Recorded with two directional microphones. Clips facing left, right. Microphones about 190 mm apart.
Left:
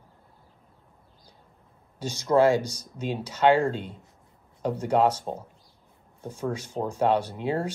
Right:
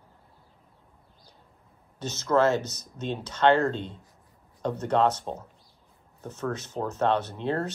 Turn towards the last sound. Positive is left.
turn(degrees=10)  # may be behind; listen again after turning